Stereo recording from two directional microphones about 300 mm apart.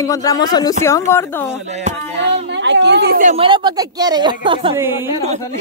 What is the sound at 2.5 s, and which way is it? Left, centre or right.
A woman's voice, right.